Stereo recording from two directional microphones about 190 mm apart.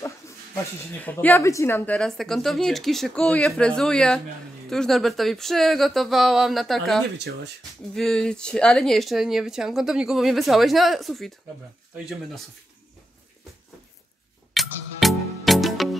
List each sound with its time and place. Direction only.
0.9 s speech: 10° left (ahead or behind)
7.2 s speech: 65° right (ahead or behind)
7.9 s speech: 5° left (ahead or behind)
14.5 s music: centre (ahead or behind)